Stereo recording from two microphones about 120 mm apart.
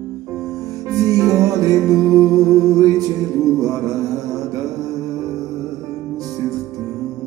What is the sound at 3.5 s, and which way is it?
Music, 30° right (ahead or behind).